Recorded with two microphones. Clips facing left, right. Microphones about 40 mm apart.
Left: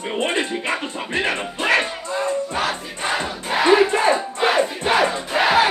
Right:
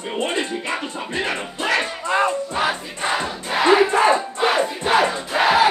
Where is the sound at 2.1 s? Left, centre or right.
Right.